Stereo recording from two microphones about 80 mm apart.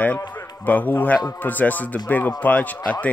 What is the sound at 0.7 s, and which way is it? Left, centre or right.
Speech, left.